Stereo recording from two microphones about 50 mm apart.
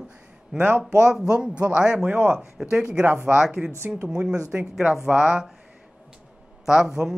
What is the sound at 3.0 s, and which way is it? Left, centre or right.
Speech, right.